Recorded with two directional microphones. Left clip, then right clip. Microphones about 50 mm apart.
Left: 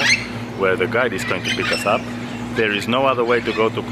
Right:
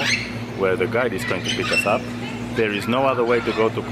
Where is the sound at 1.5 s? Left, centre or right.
Left.